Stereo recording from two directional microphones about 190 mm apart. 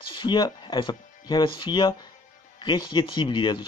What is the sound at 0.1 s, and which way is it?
Speech, 25° left (ahead or behind).